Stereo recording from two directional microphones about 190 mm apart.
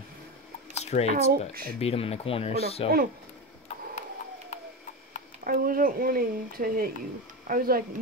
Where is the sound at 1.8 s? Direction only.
30° left (ahead or behind).